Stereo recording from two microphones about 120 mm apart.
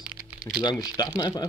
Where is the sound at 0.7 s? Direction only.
30° left (ahead or behind).